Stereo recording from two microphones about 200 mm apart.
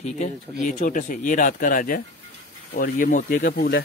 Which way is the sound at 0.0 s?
35° left (ahead or behind).